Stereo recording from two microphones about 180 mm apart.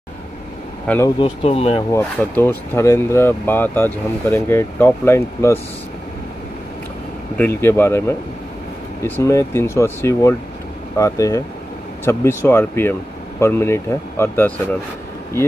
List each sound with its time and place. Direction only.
0.8 s speech: 10° left (ahead or behind)
1.2 s speech: 35° left (ahead or behind)
1.9 s speech: 10° left (ahead or behind)
7.3 s speech: 10° left (ahead or behind)